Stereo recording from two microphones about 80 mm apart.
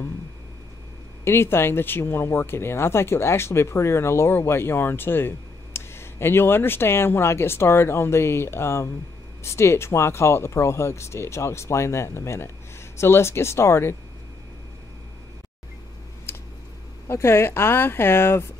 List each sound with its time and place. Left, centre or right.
1.2 s speech: left
17.1 s speech: left